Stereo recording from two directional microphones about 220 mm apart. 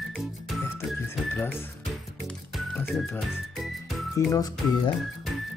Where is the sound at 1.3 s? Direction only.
10° left (ahead or behind).